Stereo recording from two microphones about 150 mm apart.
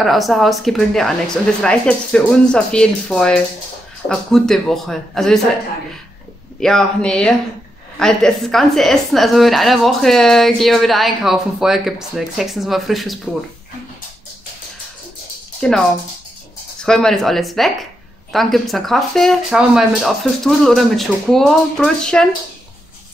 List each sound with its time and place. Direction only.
0.0 s a woman's voice: centre (ahead or behind)
6.6 s a woman's voice: 5° left (ahead or behind)
15.6 s a woman's voice: 5° left (ahead or behind)
16.8 s a woman's voice: 5° left (ahead or behind)